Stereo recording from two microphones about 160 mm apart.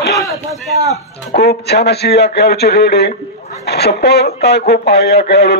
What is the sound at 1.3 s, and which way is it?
Speech, 90° left.